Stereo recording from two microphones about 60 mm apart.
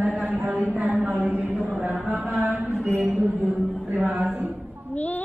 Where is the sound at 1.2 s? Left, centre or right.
Right.